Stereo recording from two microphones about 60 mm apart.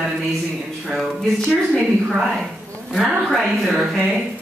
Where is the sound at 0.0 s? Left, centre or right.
Centre.